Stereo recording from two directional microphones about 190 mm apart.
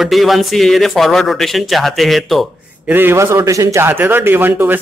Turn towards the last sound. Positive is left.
turn(degrees=-10)  # may be behind; listen again after turning